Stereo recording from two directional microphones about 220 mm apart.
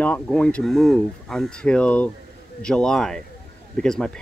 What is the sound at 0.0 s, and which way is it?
Speech, 5° left (ahead or behind).